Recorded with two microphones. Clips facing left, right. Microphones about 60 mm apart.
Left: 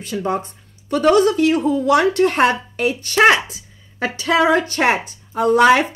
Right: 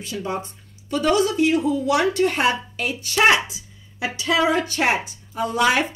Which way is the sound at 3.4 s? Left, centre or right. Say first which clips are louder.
Left 1 dB; left.